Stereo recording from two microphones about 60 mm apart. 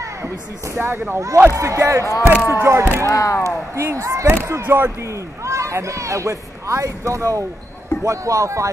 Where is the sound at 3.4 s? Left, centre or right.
Right.